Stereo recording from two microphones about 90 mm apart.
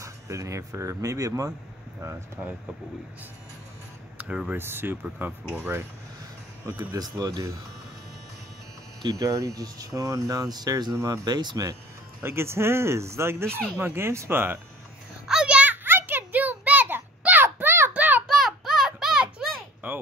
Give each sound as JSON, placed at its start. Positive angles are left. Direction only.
{"t": 0.0, "sound": "speech", "side_deg": -35}
{"t": 4.2, "sound": "speech", "side_deg": -15}
{"t": 4.6, "sound": "speech", "side_deg": -25}
{"t": 6.8, "sound": "speech", "side_deg": -50}
{"t": 9.0, "sound": "speech", "side_deg": -40}
{"t": 12.2, "sound": "speech", "side_deg": -25}
{"t": 15.2, "sound": "a sound", "side_deg": -10}
{"t": 18.2, "sound": "a sound", "side_deg": -5}
{"t": 19.8, "sound": "a sound", "side_deg": -20}